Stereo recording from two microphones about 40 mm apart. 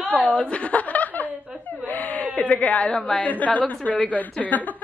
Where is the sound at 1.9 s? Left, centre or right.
Left.